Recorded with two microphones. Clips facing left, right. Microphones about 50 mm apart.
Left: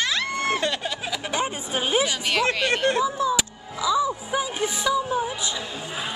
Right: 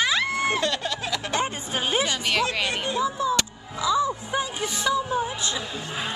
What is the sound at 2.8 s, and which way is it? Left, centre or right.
Speech, left.